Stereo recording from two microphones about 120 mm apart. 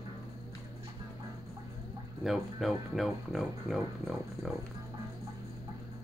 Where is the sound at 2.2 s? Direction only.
Centre (ahead or behind).